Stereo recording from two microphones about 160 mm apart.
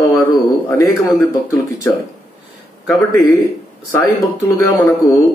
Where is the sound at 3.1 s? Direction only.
20° left (ahead or behind).